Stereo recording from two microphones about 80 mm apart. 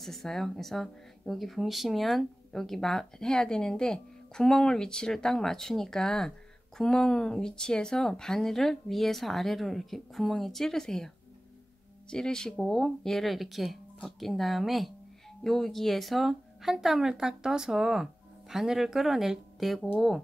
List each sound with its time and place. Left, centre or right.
0.0 s speech: centre
12.1 s speech: centre